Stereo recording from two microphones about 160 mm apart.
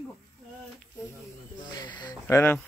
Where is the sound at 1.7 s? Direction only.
30° left (ahead or behind).